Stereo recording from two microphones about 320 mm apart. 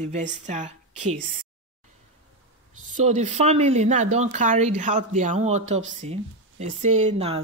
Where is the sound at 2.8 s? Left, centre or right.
Right.